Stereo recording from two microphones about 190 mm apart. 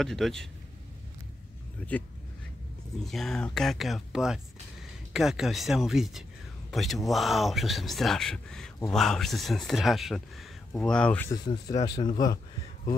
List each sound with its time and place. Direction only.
0.0 s speech: centre (ahead or behind)
1.9 s speech: 10° left (ahead or behind)
11.2 s speech: 20° left (ahead or behind)